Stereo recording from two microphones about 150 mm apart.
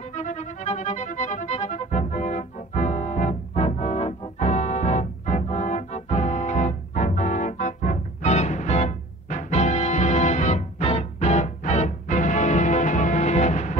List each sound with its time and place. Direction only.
0.1 s music: 50° left (ahead or behind)
4.4 s organ: 50° left (ahead or behind)